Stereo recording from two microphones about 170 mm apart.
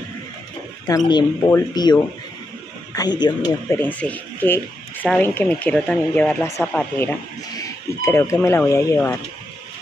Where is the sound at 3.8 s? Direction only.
10° left (ahead or behind).